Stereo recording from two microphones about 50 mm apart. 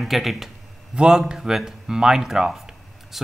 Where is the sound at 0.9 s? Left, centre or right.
Centre.